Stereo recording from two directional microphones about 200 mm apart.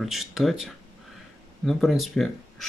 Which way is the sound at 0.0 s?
Centre (ahead or behind).